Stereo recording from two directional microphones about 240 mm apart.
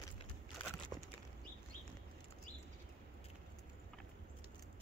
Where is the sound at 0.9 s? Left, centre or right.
Centre.